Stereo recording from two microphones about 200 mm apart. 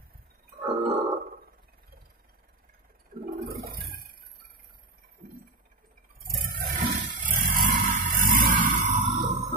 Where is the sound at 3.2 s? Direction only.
50° right (ahead or behind).